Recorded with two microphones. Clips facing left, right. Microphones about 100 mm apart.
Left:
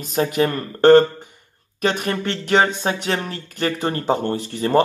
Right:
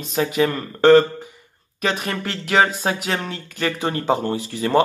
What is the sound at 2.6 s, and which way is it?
Music, 35° right (ahead or behind).